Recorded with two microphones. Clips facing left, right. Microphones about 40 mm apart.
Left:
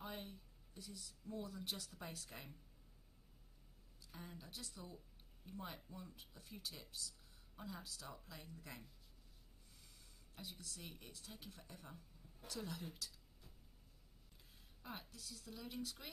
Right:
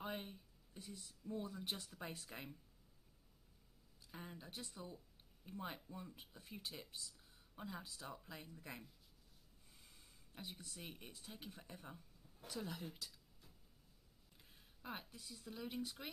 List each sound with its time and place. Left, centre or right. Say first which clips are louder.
0.0 s a sound: right 3 dB; right
1.3 s speech: right 2 dB; right
4.3 s speech: right 2 dB; right
9.8 s speech: right 1 dB; right
14.8 s speech: right 2 dB; centre